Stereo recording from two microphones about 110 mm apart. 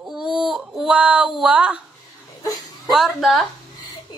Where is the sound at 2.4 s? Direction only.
35° left (ahead or behind).